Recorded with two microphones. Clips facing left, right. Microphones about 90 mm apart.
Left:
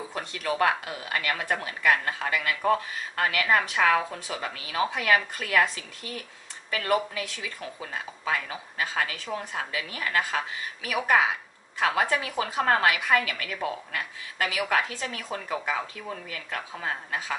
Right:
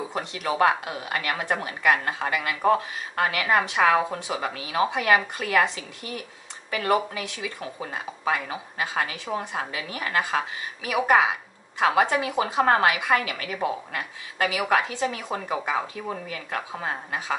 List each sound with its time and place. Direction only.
0.1 s speech: 20° right (ahead or behind)